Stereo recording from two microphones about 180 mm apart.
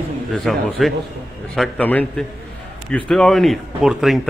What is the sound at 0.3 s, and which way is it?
A man's voice, centre (ahead or behind).